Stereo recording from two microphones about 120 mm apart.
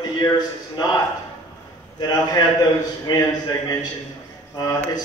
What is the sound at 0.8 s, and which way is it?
Speech, 35° left (ahead or behind).